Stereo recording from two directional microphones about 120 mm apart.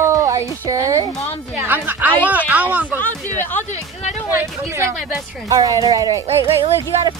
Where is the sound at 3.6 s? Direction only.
70° left (ahead or behind).